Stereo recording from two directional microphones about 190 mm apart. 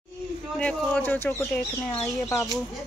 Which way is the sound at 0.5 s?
5° left (ahead or behind).